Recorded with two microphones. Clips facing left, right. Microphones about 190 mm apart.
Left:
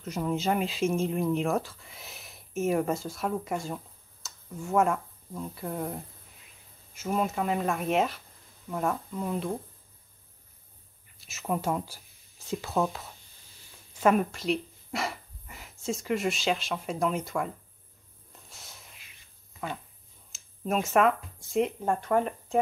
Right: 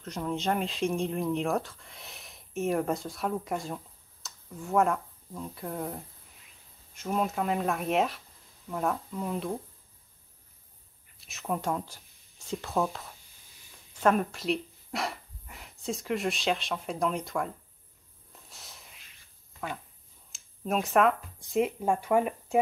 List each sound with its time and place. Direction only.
0.0 s speech: 5° left (ahead or behind)
11.1 s speech: centre (ahead or behind)
13.9 s a sound: 5° left (ahead or behind)
15.8 s speech: centre (ahead or behind)
18.5 s snort: centre (ahead or behind)
20.2 s a sound: centre (ahead or behind)
21.5 s speech: 5° right (ahead or behind)